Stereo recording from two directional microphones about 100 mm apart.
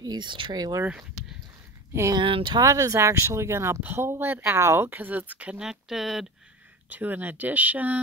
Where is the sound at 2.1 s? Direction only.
55° right (ahead or behind).